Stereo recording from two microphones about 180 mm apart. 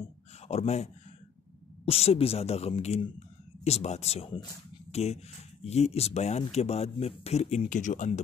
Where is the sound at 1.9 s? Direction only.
35° left (ahead or behind).